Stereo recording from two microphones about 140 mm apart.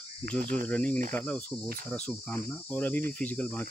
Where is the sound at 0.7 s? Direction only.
10° left (ahead or behind).